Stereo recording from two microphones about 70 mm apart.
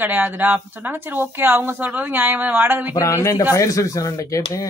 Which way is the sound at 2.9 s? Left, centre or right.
Left.